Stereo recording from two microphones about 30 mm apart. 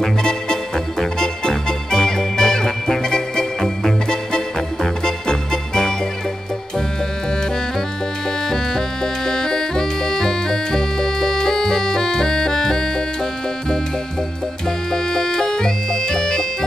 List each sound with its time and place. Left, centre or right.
0.0 s music: left
8.5 s music: centre
14.9 s music: left